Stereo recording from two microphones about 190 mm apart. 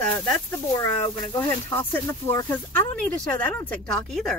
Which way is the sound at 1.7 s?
10° left (ahead or behind).